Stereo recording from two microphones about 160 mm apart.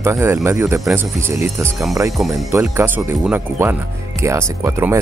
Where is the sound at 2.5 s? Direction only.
15° right (ahead or behind).